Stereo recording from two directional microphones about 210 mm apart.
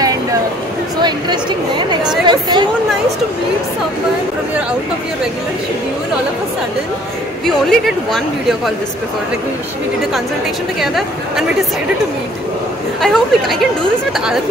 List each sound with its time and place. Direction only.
1.0 s a woman's voice: 20° right (ahead or behind)
2.2 s a sound: 20° right (ahead or behind)
7.4 s speech: centre (ahead or behind)
10.8 s speech: centre (ahead or behind)
13.0 s speech: centre (ahead or behind)